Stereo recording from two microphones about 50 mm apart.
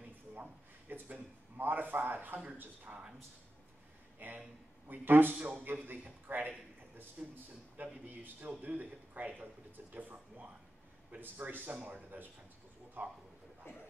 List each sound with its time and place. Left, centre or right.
0.8 s a man's voice: right
4.2 s a man's voice: right
7.2 s a man's voice: centre
7.7 s a man's voice: right
13.7 s speech: left